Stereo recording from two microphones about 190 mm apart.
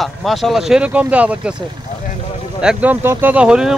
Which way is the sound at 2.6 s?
5° right (ahead or behind).